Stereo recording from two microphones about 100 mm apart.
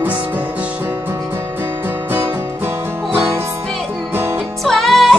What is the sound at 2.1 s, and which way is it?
Music, 20° right (ahead or behind).